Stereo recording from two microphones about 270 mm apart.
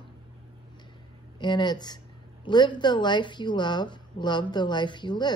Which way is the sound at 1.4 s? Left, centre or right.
Centre.